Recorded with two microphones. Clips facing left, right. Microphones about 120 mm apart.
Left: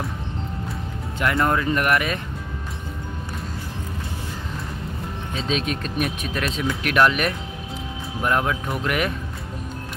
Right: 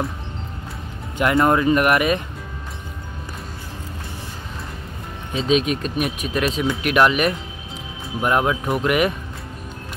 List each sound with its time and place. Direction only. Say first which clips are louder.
1.1 s speech: right 4 dB; 20° right (ahead or behind)
5.3 s speech: right 7 dB; 5° right (ahead or behind)